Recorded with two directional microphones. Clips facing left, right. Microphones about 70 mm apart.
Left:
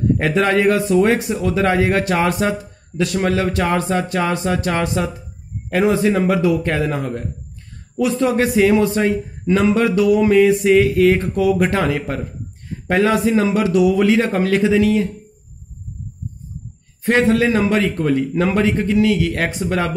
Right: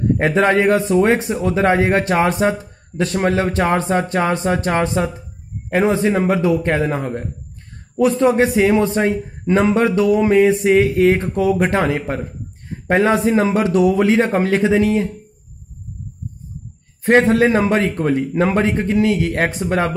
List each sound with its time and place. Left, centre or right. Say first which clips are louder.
0.3 s a man's voice: right 1 dB; right
17.0 s speech: right 2 dB; right